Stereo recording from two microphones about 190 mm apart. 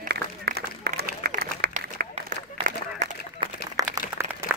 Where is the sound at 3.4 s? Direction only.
25° right (ahead or behind).